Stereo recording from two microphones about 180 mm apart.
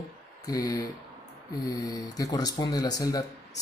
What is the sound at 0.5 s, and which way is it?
Speech, 20° left (ahead or behind).